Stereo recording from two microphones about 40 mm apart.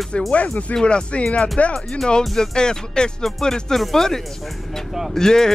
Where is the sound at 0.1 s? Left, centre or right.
Left.